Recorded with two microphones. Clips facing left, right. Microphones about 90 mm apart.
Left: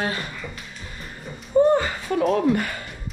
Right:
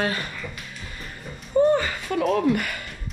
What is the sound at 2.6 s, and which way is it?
Speech, 25° left (ahead or behind).